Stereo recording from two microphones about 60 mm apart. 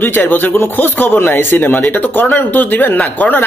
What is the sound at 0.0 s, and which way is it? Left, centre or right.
A man's voice, left.